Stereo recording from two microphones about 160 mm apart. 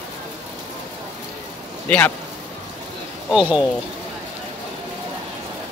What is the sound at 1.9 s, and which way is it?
Speech, 10° left (ahead or behind).